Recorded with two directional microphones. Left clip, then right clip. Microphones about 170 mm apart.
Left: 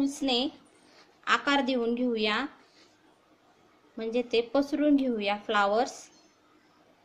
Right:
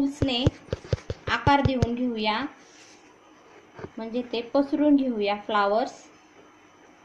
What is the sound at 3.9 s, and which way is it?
Speech, 30° left (ahead or behind).